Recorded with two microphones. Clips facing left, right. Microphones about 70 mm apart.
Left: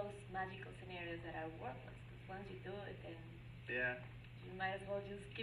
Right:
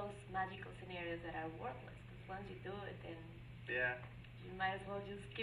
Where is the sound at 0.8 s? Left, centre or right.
Right.